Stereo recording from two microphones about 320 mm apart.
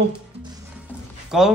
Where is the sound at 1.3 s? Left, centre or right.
Centre.